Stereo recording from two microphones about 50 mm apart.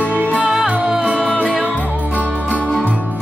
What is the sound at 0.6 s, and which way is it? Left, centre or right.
Music, right.